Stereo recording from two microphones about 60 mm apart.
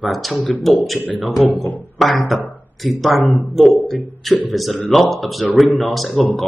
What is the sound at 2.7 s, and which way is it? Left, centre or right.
Speech, centre.